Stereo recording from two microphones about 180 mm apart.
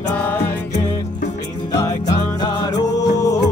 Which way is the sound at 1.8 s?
25° left (ahead or behind).